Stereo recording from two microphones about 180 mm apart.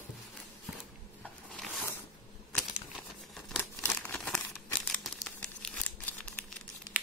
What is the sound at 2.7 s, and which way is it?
Crumpling, centre (ahead or behind).